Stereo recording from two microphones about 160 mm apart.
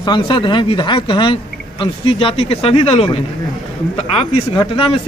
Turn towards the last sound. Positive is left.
turn(degrees=35)  # may be behind; listen again after turning